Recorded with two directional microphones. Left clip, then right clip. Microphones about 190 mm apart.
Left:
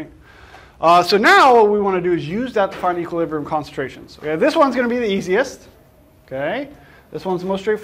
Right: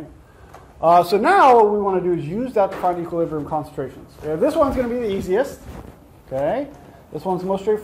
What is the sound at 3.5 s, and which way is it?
A man's voice, 45° left (ahead or behind).